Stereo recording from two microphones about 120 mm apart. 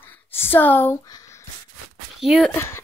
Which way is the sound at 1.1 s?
25° left (ahead or behind).